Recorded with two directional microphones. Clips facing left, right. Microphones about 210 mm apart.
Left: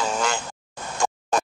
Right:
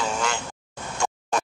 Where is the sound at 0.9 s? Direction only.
35° left (ahead or behind).